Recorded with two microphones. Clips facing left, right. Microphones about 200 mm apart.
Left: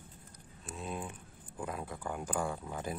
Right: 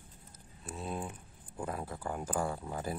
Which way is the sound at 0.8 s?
35° right (ahead or behind).